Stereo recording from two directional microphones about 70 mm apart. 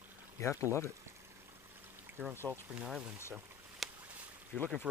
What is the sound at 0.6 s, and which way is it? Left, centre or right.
Speech, left.